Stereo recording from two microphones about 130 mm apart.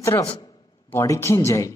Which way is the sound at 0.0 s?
25° left (ahead or behind).